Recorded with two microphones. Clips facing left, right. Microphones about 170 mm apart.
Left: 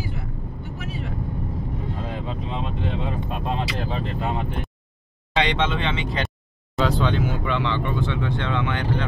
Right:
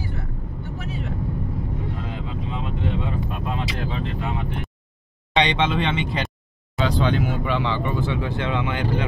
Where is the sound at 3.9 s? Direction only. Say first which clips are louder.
Left 1 dB; 40° left (ahead or behind).